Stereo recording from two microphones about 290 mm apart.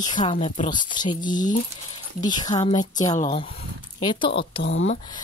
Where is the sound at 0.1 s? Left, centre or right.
Left.